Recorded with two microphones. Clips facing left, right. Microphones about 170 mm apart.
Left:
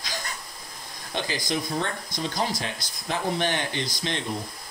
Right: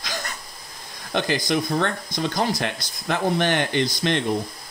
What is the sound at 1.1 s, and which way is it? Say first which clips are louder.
Speech: right 6 dB; 65° right (ahead or behind).